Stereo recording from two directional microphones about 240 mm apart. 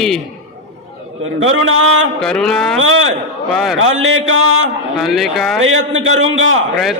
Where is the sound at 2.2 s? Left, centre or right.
Centre.